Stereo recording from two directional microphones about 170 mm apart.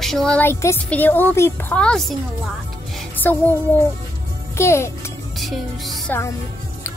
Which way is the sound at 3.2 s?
10° left (ahead or behind).